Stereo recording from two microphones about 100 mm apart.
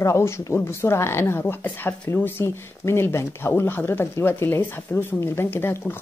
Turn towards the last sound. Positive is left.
turn(degrees=20)  # may be behind; listen again after turning